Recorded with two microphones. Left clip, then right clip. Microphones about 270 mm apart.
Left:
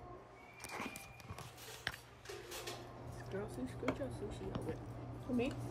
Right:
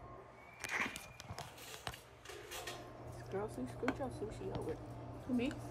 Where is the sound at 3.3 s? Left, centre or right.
Right.